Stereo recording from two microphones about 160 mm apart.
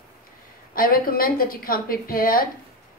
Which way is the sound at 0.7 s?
65° left (ahead or behind).